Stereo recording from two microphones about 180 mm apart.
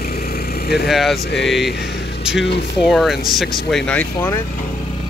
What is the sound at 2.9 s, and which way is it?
Speech, centre (ahead or behind).